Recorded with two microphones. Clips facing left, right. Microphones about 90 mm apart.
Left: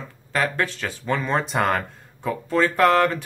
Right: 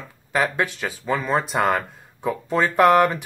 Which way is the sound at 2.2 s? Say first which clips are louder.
Even; 15° right (ahead or behind).